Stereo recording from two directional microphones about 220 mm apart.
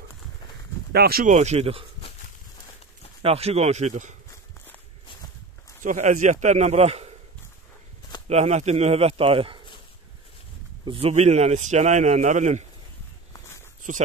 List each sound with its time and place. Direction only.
0.9 s a man's voice: 45° right (ahead or behind); by 1.9 s 25° right (ahead or behind)
3.2 s speech: 25° right (ahead or behind)
5.8 s a man's voice: 35° right (ahead or behind)
8.3 s speech: 30° right (ahead or behind)
10.9 s a man's voice: 25° right (ahead or behind)